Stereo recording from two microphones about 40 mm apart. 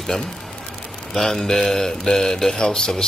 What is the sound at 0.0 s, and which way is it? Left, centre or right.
Speech, centre.